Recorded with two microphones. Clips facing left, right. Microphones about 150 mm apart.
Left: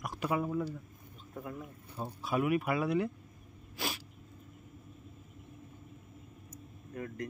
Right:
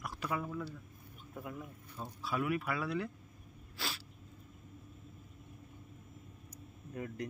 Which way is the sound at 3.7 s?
15° left (ahead or behind).